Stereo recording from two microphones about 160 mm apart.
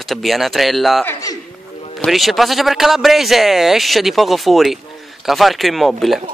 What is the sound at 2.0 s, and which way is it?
A man's voice, centre (ahead or behind).